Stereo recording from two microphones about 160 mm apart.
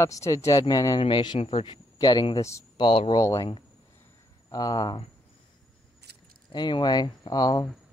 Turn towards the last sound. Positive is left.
turn(degrees=25)  # may be behind; listen again after turning